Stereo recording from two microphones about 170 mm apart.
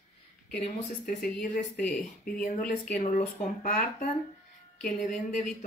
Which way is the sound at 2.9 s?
50° left (ahead or behind).